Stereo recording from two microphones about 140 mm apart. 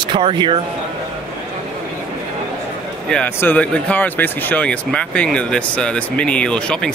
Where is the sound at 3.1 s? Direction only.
10° left (ahead or behind).